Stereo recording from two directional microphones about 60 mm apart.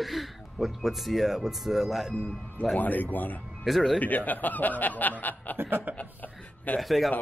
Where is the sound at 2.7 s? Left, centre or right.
Left.